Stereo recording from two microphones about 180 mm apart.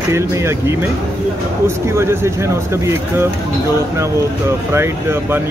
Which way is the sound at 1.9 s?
15° right (ahead or behind).